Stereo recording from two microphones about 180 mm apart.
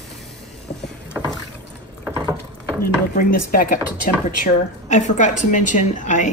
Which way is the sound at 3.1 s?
55° left (ahead or behind).